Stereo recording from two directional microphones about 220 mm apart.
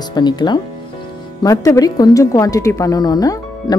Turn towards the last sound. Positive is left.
turn(degrees=15)  # may be behind; listen again after turning